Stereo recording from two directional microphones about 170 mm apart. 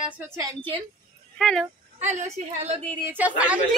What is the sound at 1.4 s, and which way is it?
Speech, centre (ahead or behind).